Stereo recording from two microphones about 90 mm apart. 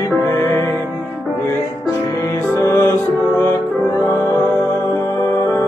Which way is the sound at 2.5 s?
30° left (ahead or behind).